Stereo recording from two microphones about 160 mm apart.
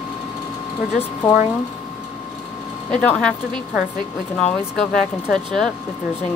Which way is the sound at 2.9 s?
5° left (ahead or behind).